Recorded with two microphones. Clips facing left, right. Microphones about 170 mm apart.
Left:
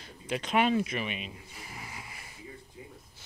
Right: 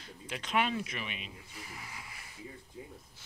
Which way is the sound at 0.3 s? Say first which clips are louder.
Left 6 dB; 20° left (ahead or behind).